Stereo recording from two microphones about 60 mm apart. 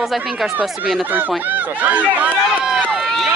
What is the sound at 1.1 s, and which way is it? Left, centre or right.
Speech, right.